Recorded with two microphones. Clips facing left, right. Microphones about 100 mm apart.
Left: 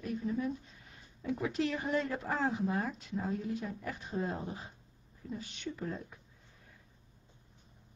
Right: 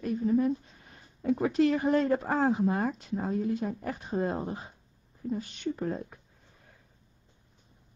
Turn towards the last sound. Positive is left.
turn(degrees=-50)  # may be behind; listen again after turning